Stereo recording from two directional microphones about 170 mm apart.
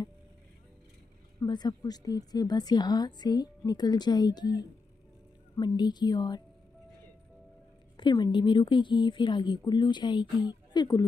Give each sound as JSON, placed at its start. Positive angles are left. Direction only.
{"t": 1.4, "sound": "a woman's voice", "side_deg": 25}
{"t": 8.0, "sound": "a woman's voice", "side_deg": 25}